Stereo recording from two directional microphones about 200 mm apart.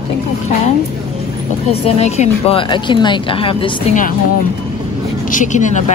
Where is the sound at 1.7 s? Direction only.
30° left (ahead or behind).